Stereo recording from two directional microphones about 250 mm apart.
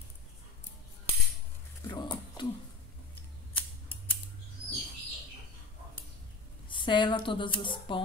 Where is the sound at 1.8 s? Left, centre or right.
Centre.